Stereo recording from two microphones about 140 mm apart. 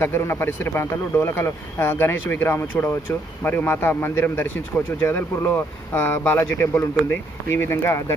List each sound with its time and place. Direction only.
0.0 s speech: 15° left (ahead or behind)